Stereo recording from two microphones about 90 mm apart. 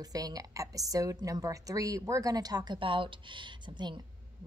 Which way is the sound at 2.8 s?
70° right (ahead or behind).